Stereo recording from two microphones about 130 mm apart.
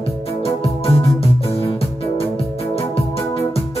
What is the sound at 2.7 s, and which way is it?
Music, 50° left (ahead or behind).